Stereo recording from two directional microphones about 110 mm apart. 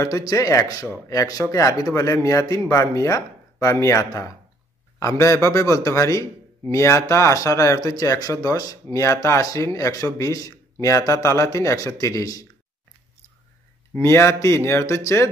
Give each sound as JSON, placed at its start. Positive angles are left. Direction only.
{"t": 0.0, "sound": "a man's voice", "side_deg": 30}
{"t": 14.0, "sound": "a man's voice", "side_deg": 25}